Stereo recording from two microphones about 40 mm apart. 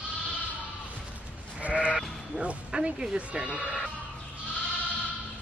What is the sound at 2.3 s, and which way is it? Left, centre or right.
Speech, right.